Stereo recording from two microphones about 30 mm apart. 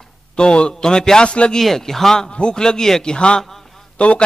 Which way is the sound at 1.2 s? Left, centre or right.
Left.